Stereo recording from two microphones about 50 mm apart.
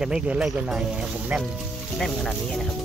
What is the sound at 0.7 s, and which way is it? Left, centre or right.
Speech, centre.